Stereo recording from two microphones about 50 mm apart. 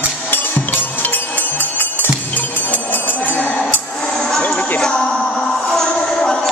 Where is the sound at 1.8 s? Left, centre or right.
Left.